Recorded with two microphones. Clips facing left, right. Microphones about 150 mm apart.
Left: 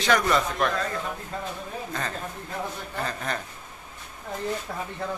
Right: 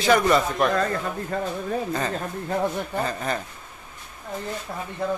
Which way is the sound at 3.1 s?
5° right (ahead or behind).